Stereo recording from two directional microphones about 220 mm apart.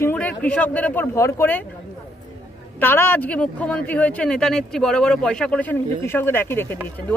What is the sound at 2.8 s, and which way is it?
Speech, 10° left (ahead or behind).